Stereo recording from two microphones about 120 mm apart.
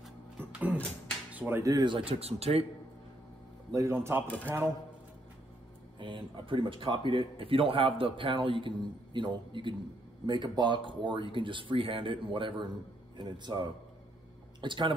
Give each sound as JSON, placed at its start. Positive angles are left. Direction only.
{"t": 0.4, "sound": "a sound", "side_deg": -15}
{"t": 1.3, "sound": "music", "side_deg": -15}
{"t": 1.6, "sound": "speech", "side_deg": -35}
{"t": 3.7, "sound": "a man's voice", "side_deg": -25}
{"t": 5.9, "sound": "speech", "side_deg": -45}